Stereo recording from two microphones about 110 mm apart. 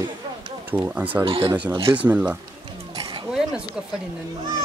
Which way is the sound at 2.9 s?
50° right (ahead or behind).